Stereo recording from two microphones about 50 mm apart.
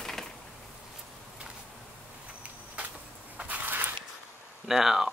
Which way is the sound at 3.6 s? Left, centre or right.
Right.